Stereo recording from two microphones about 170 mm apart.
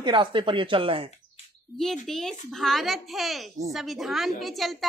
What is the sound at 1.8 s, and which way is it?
A child's voice, centre (ahead or behind).